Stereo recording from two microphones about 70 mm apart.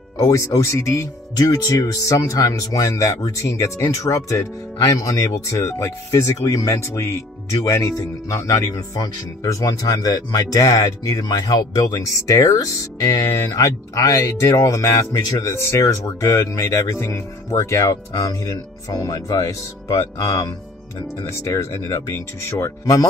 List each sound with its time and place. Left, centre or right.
0.2 s speech: left
1.3 s speech: left
12.3 s speech: left
17.0 s speech: left